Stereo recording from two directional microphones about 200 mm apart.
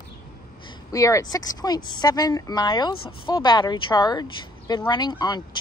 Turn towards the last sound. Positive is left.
turn(degrees=20)  # may be behind; listen again after turning